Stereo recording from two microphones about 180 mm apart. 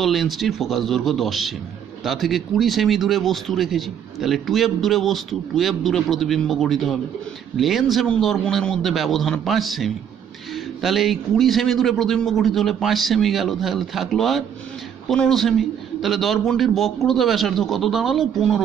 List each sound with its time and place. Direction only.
0.0 s speech: centre (ahead or behind)